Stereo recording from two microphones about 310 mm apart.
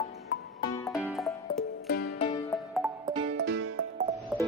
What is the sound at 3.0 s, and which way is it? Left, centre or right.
Music, right.